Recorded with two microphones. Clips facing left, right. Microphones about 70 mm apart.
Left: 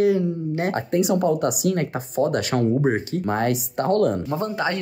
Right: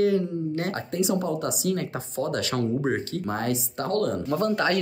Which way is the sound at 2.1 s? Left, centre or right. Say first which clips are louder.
Left 6 dB; left.